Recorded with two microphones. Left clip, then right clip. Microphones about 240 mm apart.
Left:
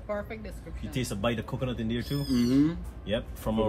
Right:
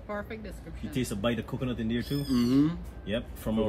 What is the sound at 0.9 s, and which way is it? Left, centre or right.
Speech, left.